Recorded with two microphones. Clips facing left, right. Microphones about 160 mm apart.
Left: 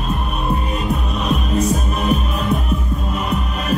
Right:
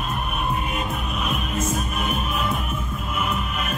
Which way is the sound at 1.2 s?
35° left (ahead or behind).